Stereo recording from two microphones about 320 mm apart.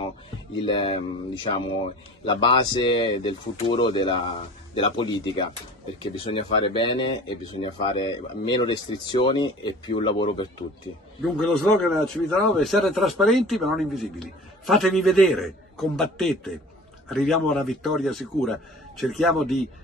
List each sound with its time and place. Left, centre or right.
0.7 s speech: centre
11.7 s a man's voice: centre